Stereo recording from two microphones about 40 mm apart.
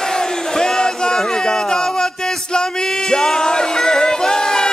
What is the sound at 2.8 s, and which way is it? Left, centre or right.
Music, centre.